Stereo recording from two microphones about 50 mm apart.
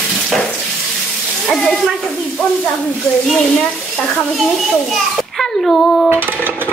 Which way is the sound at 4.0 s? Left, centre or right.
Centre.